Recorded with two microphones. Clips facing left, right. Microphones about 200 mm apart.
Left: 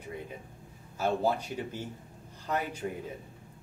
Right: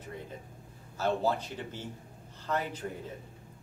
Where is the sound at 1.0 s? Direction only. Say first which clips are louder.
Left 1 dB; 10° left (ahead or behind).